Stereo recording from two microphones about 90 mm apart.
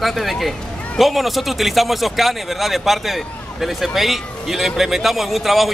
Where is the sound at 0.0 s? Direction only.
Centre (ahead or behind).